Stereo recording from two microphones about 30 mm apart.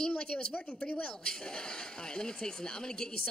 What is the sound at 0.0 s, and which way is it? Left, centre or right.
Speech, left.